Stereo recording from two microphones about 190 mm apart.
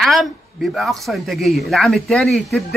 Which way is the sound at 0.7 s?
Centre (ahead or behind).